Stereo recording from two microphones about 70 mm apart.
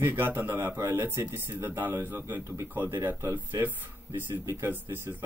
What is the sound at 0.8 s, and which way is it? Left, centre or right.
Speech, right.